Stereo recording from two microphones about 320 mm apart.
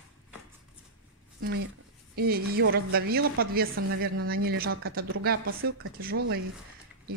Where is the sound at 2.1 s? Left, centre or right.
Right.